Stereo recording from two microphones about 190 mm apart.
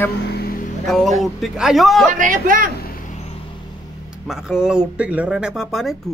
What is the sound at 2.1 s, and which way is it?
Speech, 45° right (ahead or behind).